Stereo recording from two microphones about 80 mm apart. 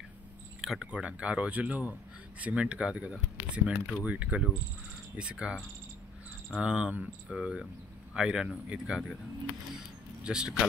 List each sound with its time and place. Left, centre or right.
0.6 s speech: centre
6.6 s speech: centre
10.2 s speech: centre